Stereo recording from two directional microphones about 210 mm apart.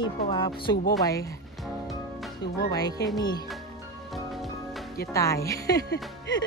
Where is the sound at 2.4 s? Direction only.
20° left (ahead or behind).